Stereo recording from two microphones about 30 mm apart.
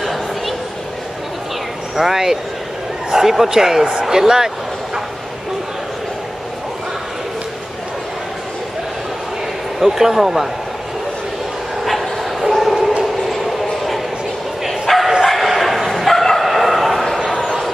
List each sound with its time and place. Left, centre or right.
0.0 s a sound: centre
2.0 s speech: centre
9.8 s speech: centre
11.8 s bow-wow: centre
13.0 s a sound: centre
14.9 s bow-wow: centre